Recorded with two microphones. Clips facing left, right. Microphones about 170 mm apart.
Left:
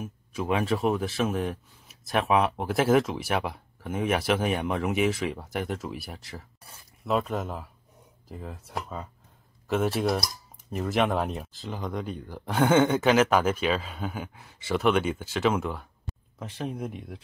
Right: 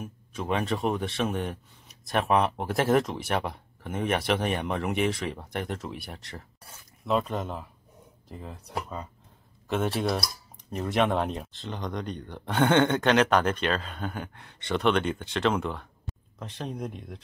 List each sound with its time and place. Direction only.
0.0 s speech: 5° left (ahead or behind)